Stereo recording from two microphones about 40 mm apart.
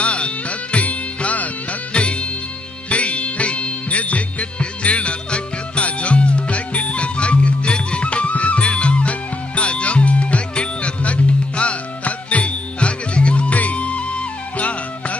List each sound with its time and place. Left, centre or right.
0.0 s music: left
1.9 s music: left